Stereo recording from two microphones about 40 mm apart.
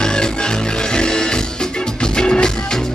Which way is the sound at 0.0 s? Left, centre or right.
Centre.